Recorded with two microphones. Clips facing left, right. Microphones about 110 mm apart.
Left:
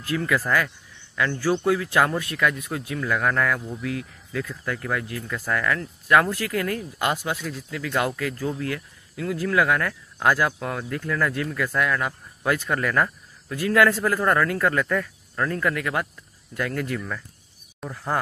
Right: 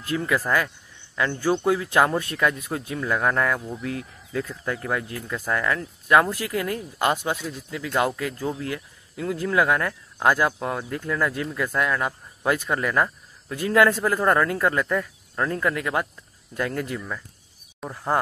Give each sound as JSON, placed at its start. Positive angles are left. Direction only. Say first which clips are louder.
{"t": 0.0, "sound": "a man's voice", "louder": "even", "side_deg": -25}